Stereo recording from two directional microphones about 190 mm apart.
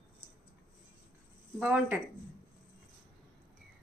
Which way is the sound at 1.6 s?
5° right (ahead or behind).